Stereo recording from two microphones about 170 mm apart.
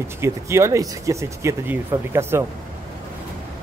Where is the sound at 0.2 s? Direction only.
15° right (ahead or behind).